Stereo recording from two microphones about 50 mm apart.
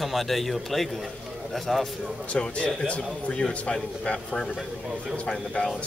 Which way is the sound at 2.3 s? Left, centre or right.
Left.